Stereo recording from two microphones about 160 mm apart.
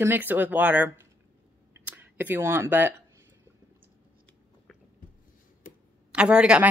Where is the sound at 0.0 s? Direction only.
10° right (ahead or behind).